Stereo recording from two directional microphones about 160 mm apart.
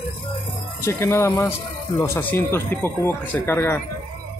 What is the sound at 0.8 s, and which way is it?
Speech, 15° left (ahead or behind).